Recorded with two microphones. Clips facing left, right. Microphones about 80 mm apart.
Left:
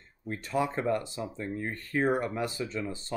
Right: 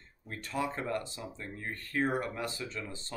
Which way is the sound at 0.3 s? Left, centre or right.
Centre.